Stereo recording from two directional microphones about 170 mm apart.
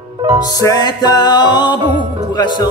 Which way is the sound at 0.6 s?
20° left (ahead or behind).